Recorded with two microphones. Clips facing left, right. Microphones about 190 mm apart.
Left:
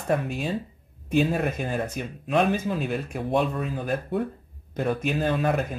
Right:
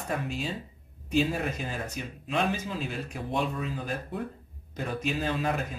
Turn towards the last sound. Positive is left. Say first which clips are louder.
# left 5 dB
turn(degrees=55)  # may be behind; listen again after turning